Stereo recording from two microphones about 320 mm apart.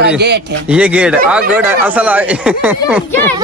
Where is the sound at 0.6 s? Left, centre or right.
Centre.